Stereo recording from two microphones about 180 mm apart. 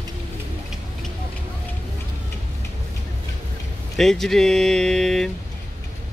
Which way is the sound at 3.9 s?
Centre (ahead or behind).